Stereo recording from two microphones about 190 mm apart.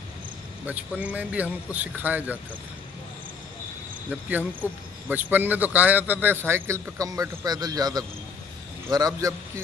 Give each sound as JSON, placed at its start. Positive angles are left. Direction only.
{"t": 0.7, "sound": "a man's voice", "side_deg": -10}
{"t": 4.1, "sound": "a man's voice", "side_deg": -10}